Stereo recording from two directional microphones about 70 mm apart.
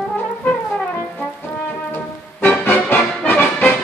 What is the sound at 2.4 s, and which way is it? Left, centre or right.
Music, left.